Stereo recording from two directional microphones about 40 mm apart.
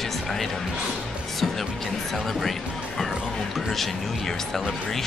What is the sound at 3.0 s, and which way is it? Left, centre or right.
Speech, centre.